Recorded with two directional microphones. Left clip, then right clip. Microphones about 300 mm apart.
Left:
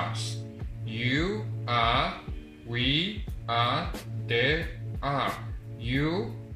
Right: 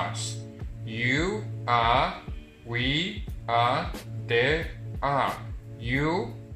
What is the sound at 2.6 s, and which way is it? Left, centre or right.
Speech, right.